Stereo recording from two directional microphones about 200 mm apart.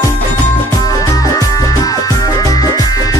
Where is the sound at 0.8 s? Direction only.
15° left (ahead or behind).